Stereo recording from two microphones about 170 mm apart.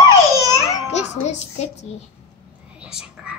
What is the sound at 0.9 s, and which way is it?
Music, 40° left (ahead or behind).